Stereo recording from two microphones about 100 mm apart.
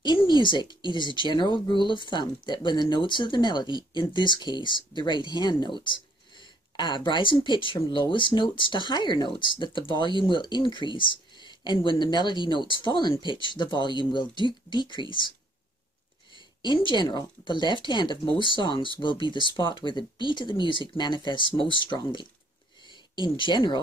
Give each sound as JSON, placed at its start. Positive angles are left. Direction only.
{"t": 0.0, "sound": "speech", "side_deg": 50}
{"t": 16.3, "sound": "speech", "side_deg": 50}